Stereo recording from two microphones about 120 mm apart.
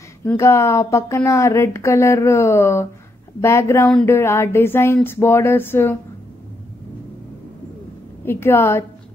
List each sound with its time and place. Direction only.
0.4 s speech: 25° left (ahead or behind)
8.3 s speech: 20° left (ahead or behind)